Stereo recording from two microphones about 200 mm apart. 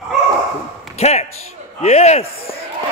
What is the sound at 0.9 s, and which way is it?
A man's voice, 30° left (ahead or behind).